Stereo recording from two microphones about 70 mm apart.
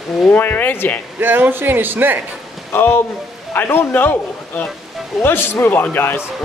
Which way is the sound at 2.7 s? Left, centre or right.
Left.